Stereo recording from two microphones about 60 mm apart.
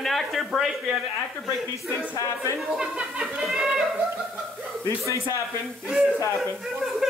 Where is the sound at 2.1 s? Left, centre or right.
Left.